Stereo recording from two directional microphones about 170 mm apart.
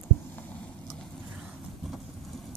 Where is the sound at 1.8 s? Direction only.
Centre (ahead or behind).